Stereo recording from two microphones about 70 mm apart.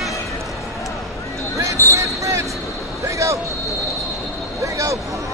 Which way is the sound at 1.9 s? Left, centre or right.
Right.